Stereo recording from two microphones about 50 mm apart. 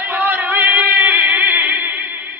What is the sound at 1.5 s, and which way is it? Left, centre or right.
Music, right.